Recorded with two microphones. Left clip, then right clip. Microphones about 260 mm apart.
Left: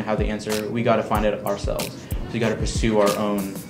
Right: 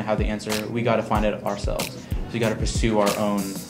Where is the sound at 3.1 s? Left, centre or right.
Centre.